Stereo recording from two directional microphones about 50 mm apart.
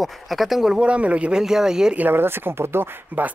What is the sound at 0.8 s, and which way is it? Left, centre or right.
Speech, right.